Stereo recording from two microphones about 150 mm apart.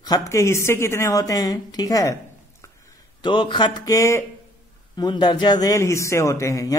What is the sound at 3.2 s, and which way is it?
A man's voice, 30° left (ahead or behind).